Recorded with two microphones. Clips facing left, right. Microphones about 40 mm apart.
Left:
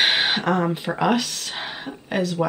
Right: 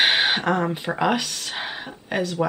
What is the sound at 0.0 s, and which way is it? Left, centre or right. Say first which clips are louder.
Speech: right 1 dB; centre.